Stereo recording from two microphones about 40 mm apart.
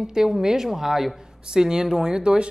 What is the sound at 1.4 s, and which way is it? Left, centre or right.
A woman's voice, centre.